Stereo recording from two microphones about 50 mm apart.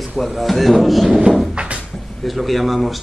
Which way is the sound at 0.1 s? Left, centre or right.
Centre.